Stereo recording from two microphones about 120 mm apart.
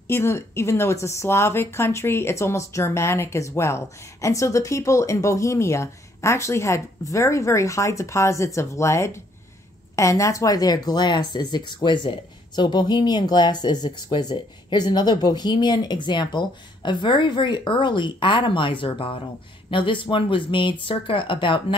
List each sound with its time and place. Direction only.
0.1 s speech: 20° left (ahead or behind); by 21.7 s 45° left (ahead or behind)